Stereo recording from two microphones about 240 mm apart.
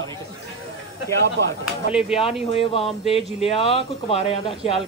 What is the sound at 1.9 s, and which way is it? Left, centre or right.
Speech, centre.